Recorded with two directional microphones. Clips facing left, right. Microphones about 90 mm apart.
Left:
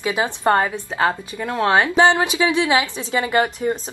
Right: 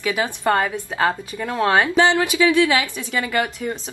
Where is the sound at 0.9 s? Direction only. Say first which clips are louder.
Left 1 dB; 10° left (ahead or behind).